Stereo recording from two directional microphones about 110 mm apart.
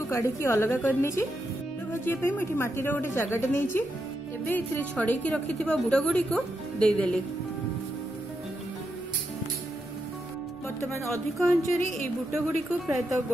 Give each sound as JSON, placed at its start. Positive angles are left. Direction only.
{"t": 0.1, "sound": "a woman's voice", "side_deg": 25}
{"t": 11.3, "sound": "a woman's voice", "side_deg": 0}